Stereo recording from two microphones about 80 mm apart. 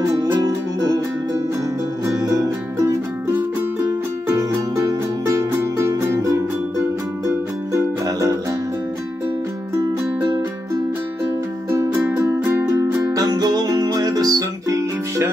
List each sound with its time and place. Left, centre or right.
0.3 s music: right
2.0 s music: right
4.3 s music: right
12.2 s music: right
13.0 s music: right